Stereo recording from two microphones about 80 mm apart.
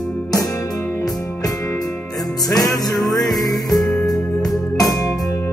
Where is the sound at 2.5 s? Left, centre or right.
Centre.